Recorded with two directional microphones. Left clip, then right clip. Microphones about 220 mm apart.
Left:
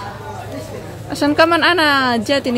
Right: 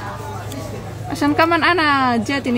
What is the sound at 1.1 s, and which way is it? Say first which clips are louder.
A woman's voice: left 2 dB; 10° left (ahead or behind).